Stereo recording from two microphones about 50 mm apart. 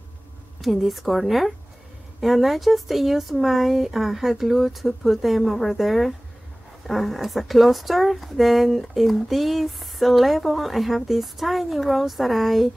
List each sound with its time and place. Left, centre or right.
0.6 s speech: centre